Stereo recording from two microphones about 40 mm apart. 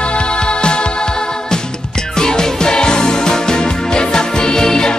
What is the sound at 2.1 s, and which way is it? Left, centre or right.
Music, centre.